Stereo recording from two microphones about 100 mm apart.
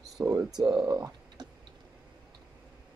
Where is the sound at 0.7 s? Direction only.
35° right (ahead or behind).